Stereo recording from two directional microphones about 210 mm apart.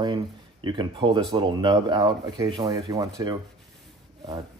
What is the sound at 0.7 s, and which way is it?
Speech, 20° right (ahead or behind).